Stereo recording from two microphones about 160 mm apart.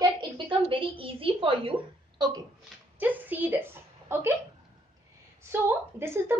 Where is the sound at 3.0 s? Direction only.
10° right (ahead or behind).